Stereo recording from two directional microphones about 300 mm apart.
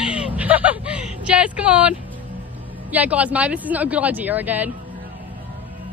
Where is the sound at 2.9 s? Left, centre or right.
Centre.